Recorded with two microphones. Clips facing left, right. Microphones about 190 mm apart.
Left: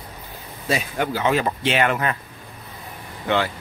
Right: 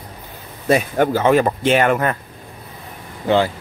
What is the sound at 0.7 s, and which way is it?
Speech, 50° right (ahead or behind).